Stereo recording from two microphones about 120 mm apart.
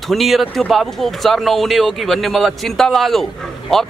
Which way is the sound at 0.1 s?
Centre (ahead or behind).